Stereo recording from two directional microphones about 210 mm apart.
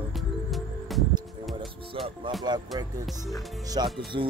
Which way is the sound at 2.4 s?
20° right (ahead or behind).